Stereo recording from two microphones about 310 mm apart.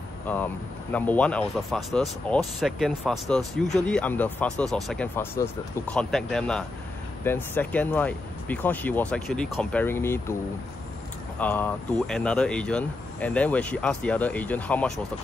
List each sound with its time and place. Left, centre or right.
0.3 s speech: centre
11.3 s speech: centre